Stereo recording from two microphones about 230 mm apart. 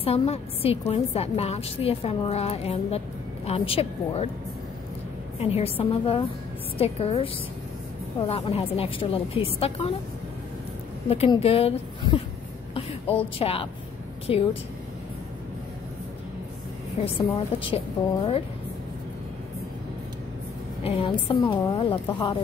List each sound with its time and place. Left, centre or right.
0.0 s a woman's voice: left
5.4 s a woman's voice: left
11.1 s a woman's voice: left
13.4 s a woman's voice: left
17.0 s a woman's voice: left
20.8 s a woman's voice: left